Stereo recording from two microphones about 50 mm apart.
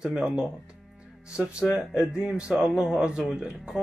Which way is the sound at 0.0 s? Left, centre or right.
Centre.